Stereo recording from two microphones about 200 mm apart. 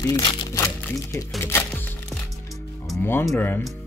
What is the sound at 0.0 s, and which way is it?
Speech, 20° left (ahead or behind).